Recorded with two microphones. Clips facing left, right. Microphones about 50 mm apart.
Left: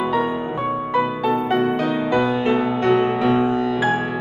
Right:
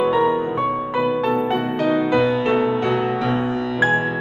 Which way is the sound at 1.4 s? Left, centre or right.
Left.